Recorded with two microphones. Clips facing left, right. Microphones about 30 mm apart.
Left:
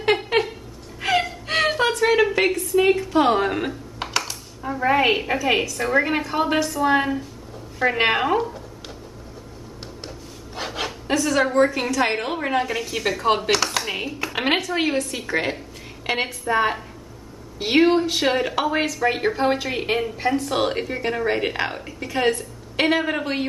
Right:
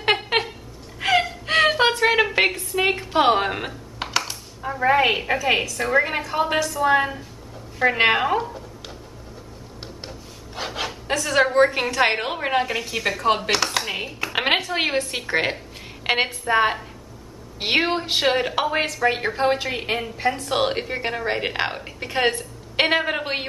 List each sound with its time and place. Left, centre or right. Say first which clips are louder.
0.3 s a sound: left 1 dB; centre
1.0 s gasp: right 1 dB; centre
1.4 s a sound: right 3 dB; centre
1.8 s a sound: even; right
2.3 s a woman's voice: left 1 dB; right
3.4 s a woman's voice: left 3 dB; centre
10.0 s a sound: left 1 dB; centre
11.5 s a woman's voice: right 1 dB; right; by 14.3 s centre
14.3 s a woman's voice: right 1 dB; centre
14.9 s a woman's voice: even; right
18.2 s a woman's voice: even; centre
20.4 s a woman's voice: even; right
22.0 s a woman's voice: even; right
22.8 s a woman's voice: even; right